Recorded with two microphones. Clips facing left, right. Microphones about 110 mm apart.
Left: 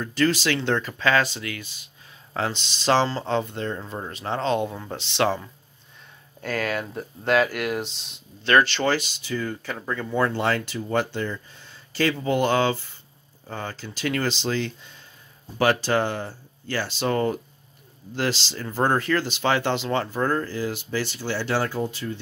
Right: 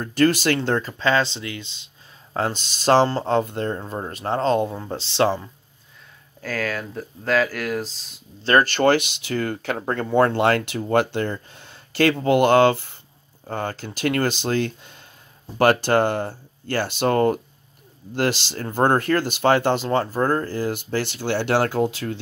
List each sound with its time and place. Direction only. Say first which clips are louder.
0.0 s speech: right 4 dB; 50° right (ahead or behind); by 1.9 s 25° right (ahead or behind)
2.3 s speech: right 3 dB; 45° right (ahead or behind)
3.7 s speech: right 3 dB; 30° right (ahead or behind)
4.1 s speech: right 4 dB; 45° right (ahead or behind)
4.6 s speech: right 3 dB; 20° right (ahead or behind)
4.9 s speech: right 3 dB; 35° right (ahead or behind)
6.4 s speech: even; centre (ahead or behind)
8.5 s speech: right 3 dB; 45° right (ahead or behind); by 9.8 s 65° right (ahead or behind)
9.8 s speech: right 6 dB; 50° right (ahead or behind)